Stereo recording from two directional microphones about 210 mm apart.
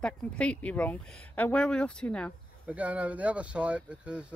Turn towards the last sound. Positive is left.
turn(degrees=-5)  # may be behind; listen again after turning